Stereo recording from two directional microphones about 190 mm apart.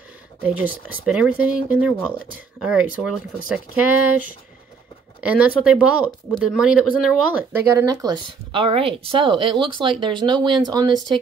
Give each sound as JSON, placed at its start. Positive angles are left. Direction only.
{"t": 0.4, "sound": "speech", "side_deg": -10}
{"t": 5.2, "sound": "speech", "side_deg": -5}